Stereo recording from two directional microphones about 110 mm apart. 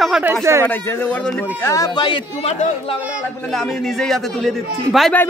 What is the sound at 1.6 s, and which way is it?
Speech, 30° left (ahead or behind).